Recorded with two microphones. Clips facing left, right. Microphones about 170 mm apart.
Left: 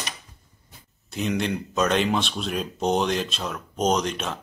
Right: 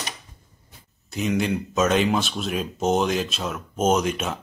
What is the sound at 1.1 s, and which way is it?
Speech, centre (ahead or behind).